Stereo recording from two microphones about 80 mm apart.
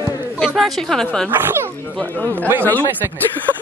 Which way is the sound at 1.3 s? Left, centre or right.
Right.